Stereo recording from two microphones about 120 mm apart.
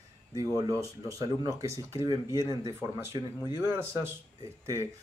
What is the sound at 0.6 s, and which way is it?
Speech, 25° right (ahead or behind).